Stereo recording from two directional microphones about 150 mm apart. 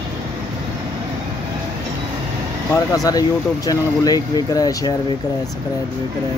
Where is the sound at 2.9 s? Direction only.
25° left (ahead or behind).